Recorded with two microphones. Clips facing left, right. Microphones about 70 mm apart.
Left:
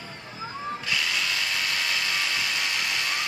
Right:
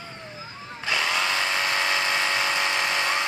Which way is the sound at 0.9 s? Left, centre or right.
Right.